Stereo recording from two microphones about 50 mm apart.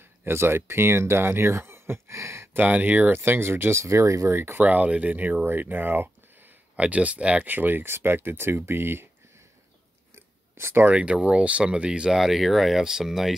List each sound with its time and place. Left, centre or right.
0.2 s speech: right
2.5 s speech: right
3.2 s speech: right
3.7 s speech: right
4.3 s speech: right
4.6 s speech: right
6.8 s speech: right
7.4 s speech: right
10.1 s chewing: right
10.9 s speech: right
12.1 s speech: centre